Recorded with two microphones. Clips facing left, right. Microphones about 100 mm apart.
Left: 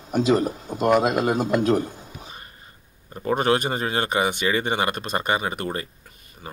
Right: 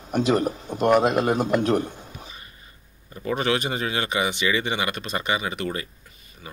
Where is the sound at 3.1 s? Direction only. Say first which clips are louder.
Left 3 dB; 40° left (ahead or behind).